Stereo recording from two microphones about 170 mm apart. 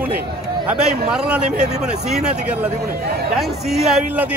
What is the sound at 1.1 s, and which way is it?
A man's voice, 5° right (ahead or behind).